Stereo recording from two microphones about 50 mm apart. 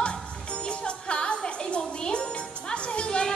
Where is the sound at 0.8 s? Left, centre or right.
Left.